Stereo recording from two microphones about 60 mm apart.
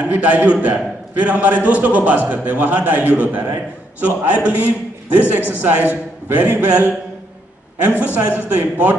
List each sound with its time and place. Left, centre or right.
0.1 s a man's voice: right